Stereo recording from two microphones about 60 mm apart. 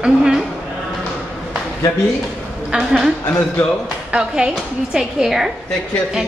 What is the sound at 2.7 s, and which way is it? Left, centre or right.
Speech, centre.